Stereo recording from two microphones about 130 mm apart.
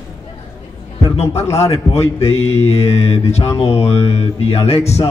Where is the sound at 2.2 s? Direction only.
55° left (ahead or behind).